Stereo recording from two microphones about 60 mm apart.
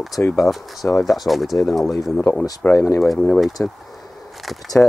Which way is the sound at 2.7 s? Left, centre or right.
Left.